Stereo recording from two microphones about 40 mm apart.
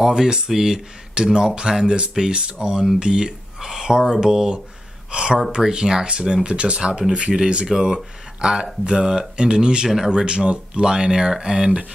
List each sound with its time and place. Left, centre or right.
0.0 s speech: centre
10.2 s speech: right